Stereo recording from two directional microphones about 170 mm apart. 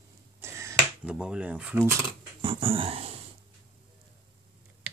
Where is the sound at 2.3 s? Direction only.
30° right (ahead or behind).